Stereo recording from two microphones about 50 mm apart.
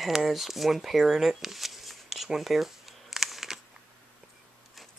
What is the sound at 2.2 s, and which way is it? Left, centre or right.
Crumpling, centre.